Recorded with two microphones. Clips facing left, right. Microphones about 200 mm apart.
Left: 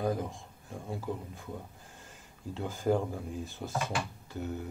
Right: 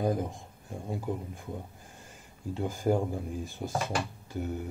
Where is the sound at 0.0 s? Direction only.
15° right (ahead or behind).